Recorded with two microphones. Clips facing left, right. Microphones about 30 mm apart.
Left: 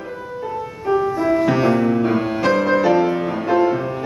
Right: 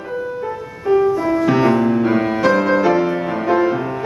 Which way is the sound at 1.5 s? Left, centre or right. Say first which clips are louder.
Right 2 dB; centre.